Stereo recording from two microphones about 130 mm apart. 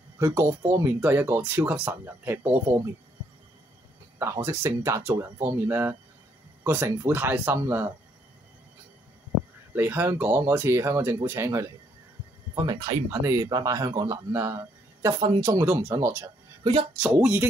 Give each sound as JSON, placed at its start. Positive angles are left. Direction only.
{"t": 0.2, "sound": "speech", "side_deg": -20}
{"t": 4.2, "sound": "speech", "side_deg": -20}
{"t": 9.8, "sound": "speech", "side_deg": -15}
{"t": 12.5, "sound": "speech", "side_deg": -30}